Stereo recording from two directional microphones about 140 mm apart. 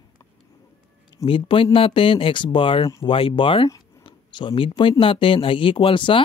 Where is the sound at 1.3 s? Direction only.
40° left (ahead or behind).